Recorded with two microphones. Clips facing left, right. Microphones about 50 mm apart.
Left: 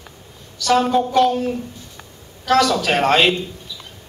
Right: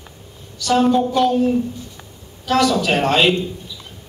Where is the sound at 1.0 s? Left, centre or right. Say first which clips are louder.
Even; left.